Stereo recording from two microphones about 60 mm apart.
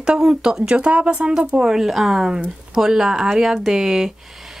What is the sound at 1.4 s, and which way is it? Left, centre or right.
Speech, centre.